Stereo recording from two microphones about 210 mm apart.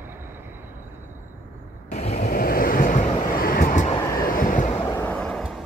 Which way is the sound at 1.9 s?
35° left (ahead or behind).